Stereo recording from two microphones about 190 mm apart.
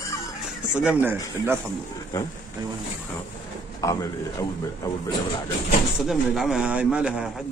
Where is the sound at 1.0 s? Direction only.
10° right (ahead or behind).